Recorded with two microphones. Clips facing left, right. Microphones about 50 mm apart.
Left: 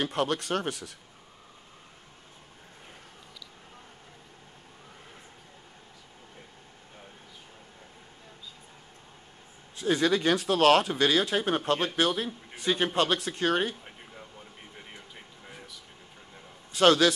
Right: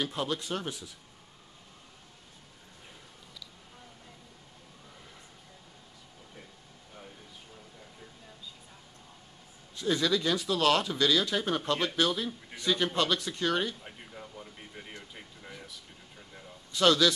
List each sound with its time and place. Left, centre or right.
0.0 s speech: left
9.8 s speech: left
16.7 s a man's voice: left